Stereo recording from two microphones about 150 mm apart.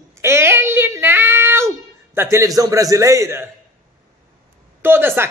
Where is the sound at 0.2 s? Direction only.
15° right (ahead or behind).